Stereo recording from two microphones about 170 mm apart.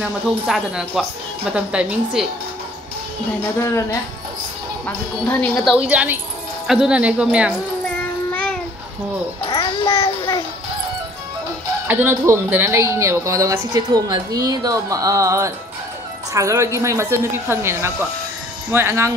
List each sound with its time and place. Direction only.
0.5 s a woman's voice: centre (ahead or behind)
3.5 s speech: 15° left (ahead or behind)
4.8 s speech: 10° left (ahead or behind)
5.8 s speech: 10° right (ahead or behind)
7.8 s a sound: 10° left (ahead or behind)
9.6 s babbling: 30° left (ahead or behind)
11.9 s speech: 15° right (ahead or behind)